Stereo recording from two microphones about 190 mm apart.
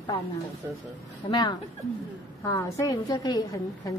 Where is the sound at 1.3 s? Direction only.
25° left (ahead or behind).